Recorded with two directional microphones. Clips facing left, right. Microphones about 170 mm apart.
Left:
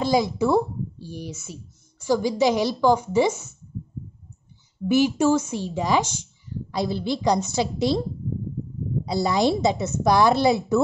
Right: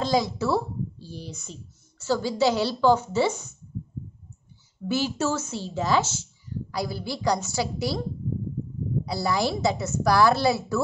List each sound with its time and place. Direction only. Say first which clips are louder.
0.0 s speech: left 3 dB; 15° left (ahead or behind)
4.8 s a woman's voice: left 7 dB; 15° left (ahead or behind)
9.0 s a woman's voice: left 5 dB; 20° left (ahead or behind)